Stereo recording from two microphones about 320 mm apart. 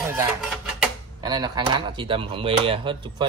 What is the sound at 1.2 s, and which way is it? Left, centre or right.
Speech, centre.